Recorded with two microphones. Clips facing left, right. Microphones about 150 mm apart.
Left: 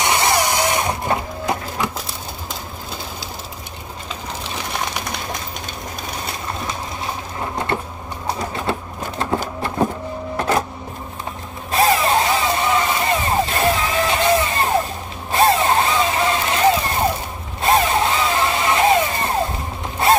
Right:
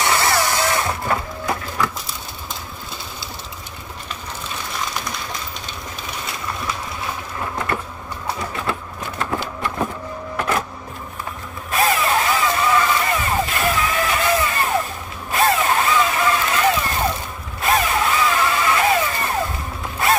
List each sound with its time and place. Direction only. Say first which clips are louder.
0.0 s a sound: left 1 dB; 20° left (ahead or behind)
6.2 s bird: right 1 dB; 40° left (ahead or behind)
7.5 s printer: left 2 dB; 30° left (ahead or behind)
8.3 s bird: left 2 dB; 35° left (ahead or behind)
9.4 s a sound: left 3 dB; 35° left (ahead or behind)
10.3 s printer: left 3 dB; 35° left (ahead or behind)
11.7 s vehicle: left 3 dB; 30° left (ahead or behind)